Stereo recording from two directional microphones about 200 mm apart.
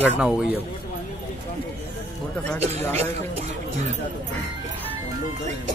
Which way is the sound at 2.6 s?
30° right (ahead or behind).